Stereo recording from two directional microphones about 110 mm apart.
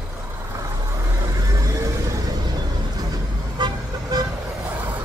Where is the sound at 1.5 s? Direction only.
30° right (ahead or behind).